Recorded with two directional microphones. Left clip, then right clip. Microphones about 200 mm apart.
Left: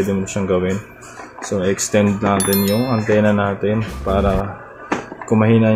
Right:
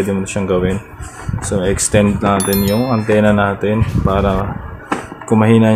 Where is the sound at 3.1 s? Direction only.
15° right (ahead or behind).